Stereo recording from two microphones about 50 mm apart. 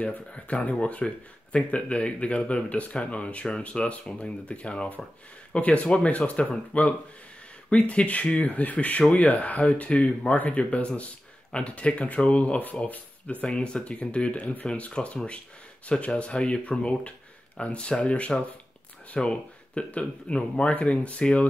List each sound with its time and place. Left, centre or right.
0.0 s speech: left
13.5 s speech: centre
14.9 s speech: centre